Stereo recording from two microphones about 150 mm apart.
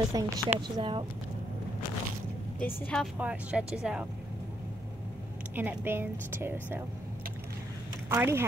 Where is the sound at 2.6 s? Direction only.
5° left (ahead or behind).